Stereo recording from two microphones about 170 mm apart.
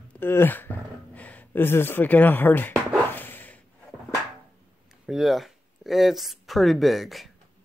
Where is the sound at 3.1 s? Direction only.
10° left (ahead or behind).